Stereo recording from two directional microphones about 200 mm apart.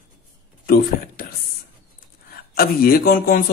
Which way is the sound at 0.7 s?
50° left (ahead or behind).